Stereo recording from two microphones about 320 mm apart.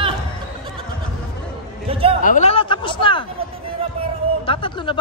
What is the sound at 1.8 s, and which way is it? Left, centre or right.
Chatter, centre.